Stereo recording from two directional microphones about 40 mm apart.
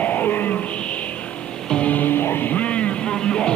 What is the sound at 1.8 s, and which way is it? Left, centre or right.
Music, left.